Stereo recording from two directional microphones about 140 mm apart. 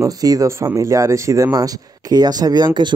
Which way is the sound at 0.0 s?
25° right (ahead or behind).